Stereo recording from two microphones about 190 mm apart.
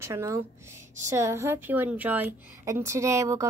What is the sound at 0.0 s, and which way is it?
A woman's voice, 15° right (ahead or behind).